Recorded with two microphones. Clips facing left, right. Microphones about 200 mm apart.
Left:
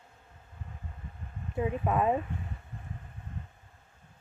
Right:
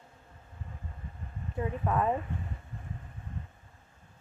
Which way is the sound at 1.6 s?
15° left (ahead or behind).